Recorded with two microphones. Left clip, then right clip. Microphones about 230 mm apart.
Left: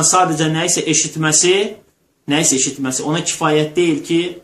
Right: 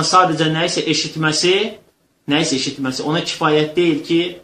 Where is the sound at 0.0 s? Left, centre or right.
Centre.